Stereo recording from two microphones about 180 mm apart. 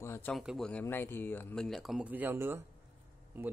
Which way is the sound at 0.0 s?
15° left (ahead or behind).